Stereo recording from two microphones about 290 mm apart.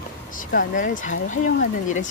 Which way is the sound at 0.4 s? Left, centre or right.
Left.